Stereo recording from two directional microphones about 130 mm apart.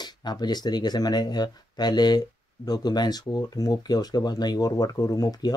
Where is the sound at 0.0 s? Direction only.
35° left (ahead or behind).